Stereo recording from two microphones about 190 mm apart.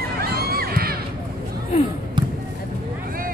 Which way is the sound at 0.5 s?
55° right (ahead or behind).